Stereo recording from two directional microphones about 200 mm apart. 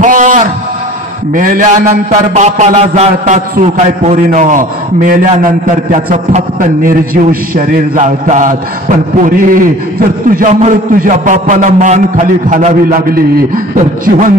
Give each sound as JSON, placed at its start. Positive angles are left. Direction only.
{"t": 0.0, "sound": "a sound", "side_deg": -40}
{"t": 1.3, "sound": "a man's voice", "side_deg": -45}
{"t": 2.0, "sound": "mantra", "side_deg": -35}